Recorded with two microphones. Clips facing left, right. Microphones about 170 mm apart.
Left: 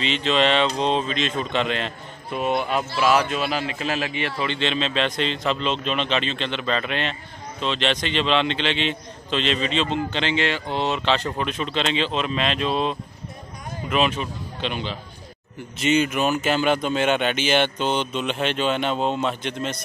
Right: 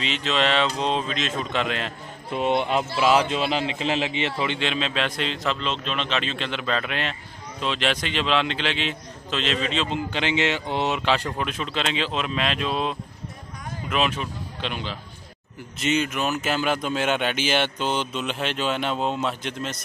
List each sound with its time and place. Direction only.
0.0 s a man's voice: 5° right (ahead or behind)
2.3 s a man's voice: 25° right (ahead or behind); by 19.8 s 5° right (ahead or behind)